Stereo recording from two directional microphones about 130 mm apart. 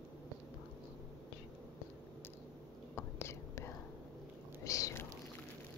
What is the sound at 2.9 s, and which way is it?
Whispering, 20° left (ahead or behind).